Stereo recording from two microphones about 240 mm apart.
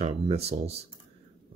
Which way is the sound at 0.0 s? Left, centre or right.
Right.